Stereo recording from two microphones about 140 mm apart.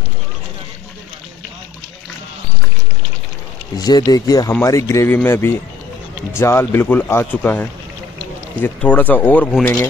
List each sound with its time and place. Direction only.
3.7 s speech: 30° left (ahead or behind); by 9.7 s 10° left (ahead or behind)